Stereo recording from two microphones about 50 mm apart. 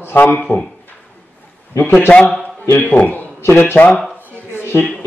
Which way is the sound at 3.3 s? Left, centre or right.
Left.